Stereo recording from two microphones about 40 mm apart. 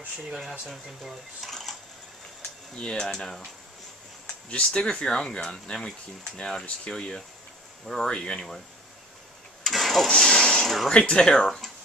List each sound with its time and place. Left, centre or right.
0.5 s speech: centre
2.7 s speech: left
4.5 s speech: left
4.8 s speech: centre
9.6 s engine starting: centre
10.0 s a sound: centre
10.9 s speech: left